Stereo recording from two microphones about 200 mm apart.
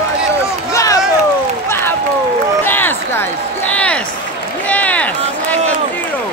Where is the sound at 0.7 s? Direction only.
15° left (ahead or behind).